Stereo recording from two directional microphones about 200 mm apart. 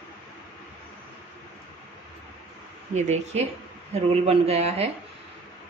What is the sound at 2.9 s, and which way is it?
A man's voice, 35° right (ahead or behind).